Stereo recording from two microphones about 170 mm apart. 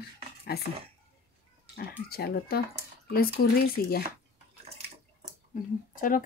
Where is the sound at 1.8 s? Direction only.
65° left (ahead or behind).